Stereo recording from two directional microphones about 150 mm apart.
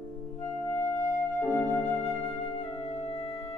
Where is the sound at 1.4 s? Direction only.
15° left (ahead or behind).